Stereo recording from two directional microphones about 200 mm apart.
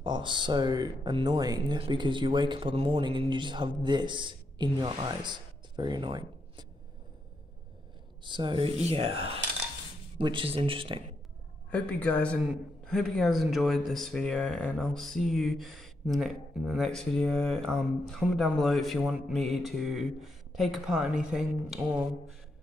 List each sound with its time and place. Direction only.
0.0 s speech: 25° right (ahead or behind)
8.2 s speech: 25° right (ahead or behind)
11.7 s speech: 5° left (ahead or behind)